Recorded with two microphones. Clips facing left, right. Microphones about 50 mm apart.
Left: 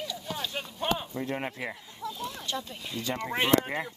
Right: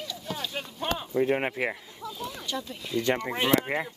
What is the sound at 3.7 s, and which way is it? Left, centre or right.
Speech, right.